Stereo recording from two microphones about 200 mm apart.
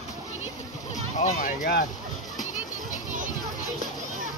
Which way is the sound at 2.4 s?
40° left (ahead or behind).